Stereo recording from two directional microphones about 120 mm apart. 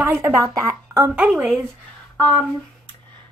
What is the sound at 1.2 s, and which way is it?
Speech, 10° right (ahead or behind).